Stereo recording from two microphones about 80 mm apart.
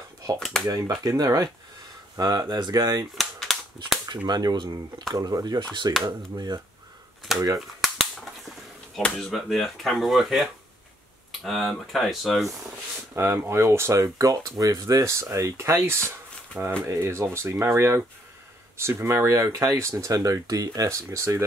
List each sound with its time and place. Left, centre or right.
0.4 s speech: centre
0.7 s speech: right
3.2 s a sound: centre
4.1 s speech: right
5.1 s speech: right
7.8 s cap gun: centre
9.0 s speech: centre
13.1 s speech: right
14.1 s speech: right